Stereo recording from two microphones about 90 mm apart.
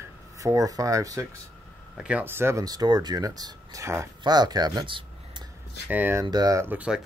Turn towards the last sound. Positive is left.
turn(degrees=-15)  # may be behind; listen again after turning